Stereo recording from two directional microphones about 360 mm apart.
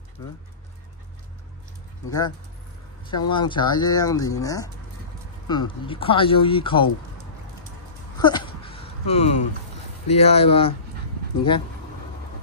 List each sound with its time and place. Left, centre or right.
2.0 s speech: centre
8.2 s a sound: centre
10.0 s speech: centre